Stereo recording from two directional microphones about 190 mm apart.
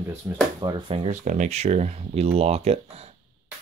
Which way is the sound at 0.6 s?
30° right (ahead or behind).